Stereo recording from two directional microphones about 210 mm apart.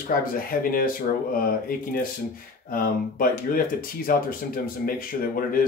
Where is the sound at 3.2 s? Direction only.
45° left (ahead or behind).